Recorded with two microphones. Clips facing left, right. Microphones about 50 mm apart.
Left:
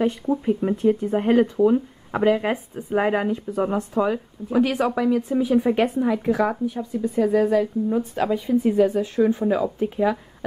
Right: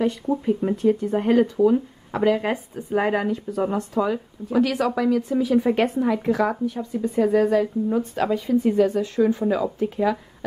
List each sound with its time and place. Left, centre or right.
0.0 s speech: centre
5.7 s speech: centre